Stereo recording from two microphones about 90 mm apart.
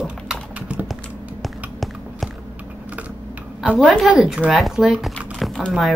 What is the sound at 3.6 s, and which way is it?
Speech, 10° right (ahead or behind).